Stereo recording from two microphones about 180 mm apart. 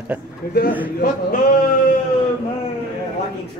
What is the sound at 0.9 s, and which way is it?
Speech, 55° left (ahead or behind).